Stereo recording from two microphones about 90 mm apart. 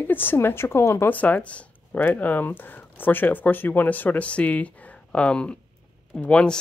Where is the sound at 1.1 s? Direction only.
15° left (ahead or behind).